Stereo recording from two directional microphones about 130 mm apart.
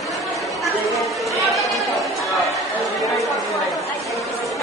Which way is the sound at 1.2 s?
Centre (ahead or behind).